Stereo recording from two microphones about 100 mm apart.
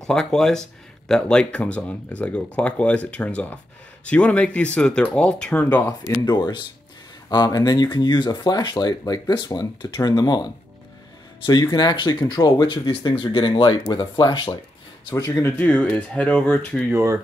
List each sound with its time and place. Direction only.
0.0 s speech: 5° left (ahead or behind)
5.8 s speech: 40° left (ahead or behind)
11.7 s speech: 45° left (ahead or behind)
12.6 s speech: 55° left (ahead or behind); by 15.4 s 40° left (ahead or behind)
15.4 s speech: 20° left (ahead or behind)
16.9 s speech: 30° right (ahead or behind)